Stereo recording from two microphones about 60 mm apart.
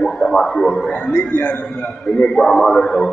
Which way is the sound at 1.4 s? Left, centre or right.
Left.